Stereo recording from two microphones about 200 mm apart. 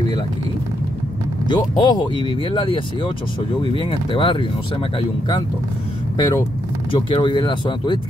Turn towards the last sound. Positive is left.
turn(degrees=25)  # may be behind; listen again after turning